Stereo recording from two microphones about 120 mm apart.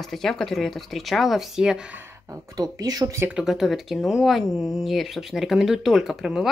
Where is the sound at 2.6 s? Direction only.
30° right (ahead or behind).